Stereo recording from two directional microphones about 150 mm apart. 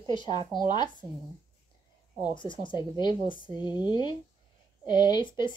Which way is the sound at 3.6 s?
30° left (ahead or behind).